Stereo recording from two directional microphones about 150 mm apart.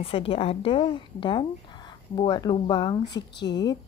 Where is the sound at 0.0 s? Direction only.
40° left (ahead or behind).